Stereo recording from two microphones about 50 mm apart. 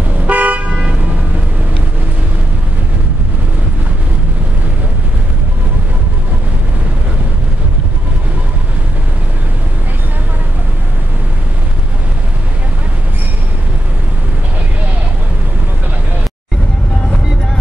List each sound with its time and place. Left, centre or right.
0.3 s car: right